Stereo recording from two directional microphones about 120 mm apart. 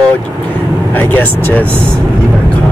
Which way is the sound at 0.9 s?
15° left (ahead or behind).